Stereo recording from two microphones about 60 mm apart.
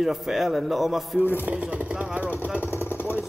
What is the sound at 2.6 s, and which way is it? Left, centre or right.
Vehicle, left.